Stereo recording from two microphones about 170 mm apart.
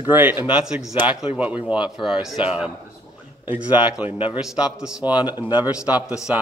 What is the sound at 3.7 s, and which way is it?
Speech, 10° right (ahead or behind).